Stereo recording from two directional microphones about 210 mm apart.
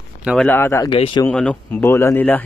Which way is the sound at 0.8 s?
25° left (ahead or behind).